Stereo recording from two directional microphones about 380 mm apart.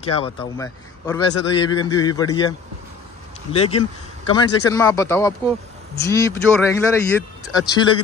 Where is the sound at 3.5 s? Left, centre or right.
Centre.